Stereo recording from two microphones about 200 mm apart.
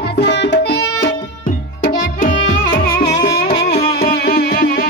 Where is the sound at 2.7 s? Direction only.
50° left (ahead or behind).